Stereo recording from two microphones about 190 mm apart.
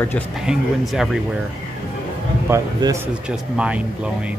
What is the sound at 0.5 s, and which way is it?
Speech, 5° right (ahead or behind).